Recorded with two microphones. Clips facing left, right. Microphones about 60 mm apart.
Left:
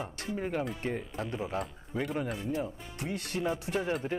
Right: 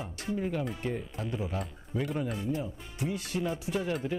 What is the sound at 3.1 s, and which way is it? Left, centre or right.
Speech, left.